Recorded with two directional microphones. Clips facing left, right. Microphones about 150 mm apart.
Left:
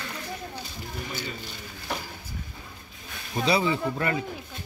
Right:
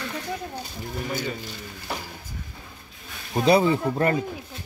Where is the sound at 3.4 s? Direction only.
45° right (ahead or behind).